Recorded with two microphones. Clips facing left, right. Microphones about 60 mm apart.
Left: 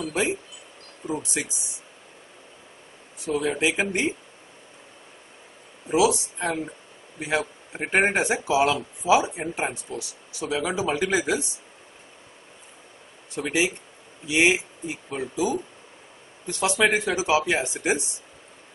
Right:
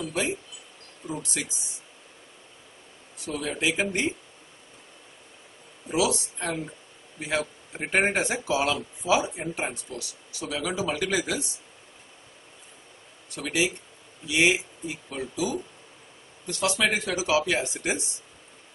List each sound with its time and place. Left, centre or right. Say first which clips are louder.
1.0 s speech: left 4 dB; left
3.3 s speech: left 4 dB; centre
5.9 s speech: left 5 dB; left
13.3 s speech: left 2 dB; left